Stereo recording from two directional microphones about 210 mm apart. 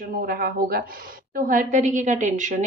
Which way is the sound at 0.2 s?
45° right (ahead or behind).